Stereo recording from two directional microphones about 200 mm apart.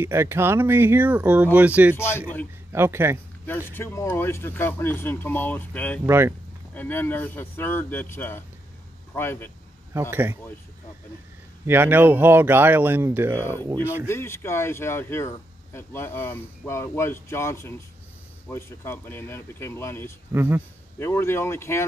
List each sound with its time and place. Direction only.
0.0 s speech: 10° right (ahead or behind)
2.0 s speech: 10° left (ahead or behind)
2.7 s speech: 10° right (ahead or behind)
3.4 s speech: 10° left (ahead or behind)
6.0 s speech: 15° right (ahead or behind)
6.7 s speech: 10° left (ahead or behind)
10.1 s speech: 10° right (ahead or behind)
11.6 s speech: 10° right (ahead or behind)
14.0 s speech: 15° left (ahead or behind)
20.3 s speech: 10° right (ahead or behind)
21.0 s speech: 10° left (ahead or behind)